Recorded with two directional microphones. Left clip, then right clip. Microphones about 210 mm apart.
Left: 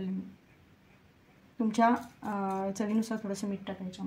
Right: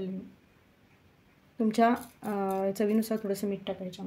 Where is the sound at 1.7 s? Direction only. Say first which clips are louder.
Right 1 dB; 45° right (ahead or behind).